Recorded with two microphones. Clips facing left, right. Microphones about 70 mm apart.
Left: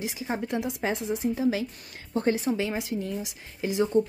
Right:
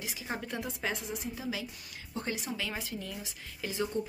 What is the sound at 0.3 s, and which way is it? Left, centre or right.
Speech, centre.